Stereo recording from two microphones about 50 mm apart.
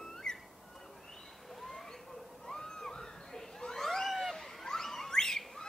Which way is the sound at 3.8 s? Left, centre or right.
Centre.